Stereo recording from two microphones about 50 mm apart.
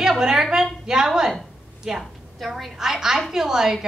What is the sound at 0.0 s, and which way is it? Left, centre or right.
A woman's voice, centre.